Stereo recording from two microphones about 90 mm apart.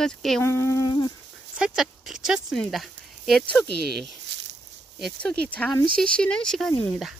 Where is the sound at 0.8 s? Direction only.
50° left (ahead or behind).